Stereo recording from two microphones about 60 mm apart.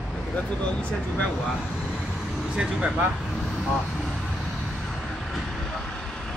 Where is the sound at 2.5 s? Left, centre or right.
Centre.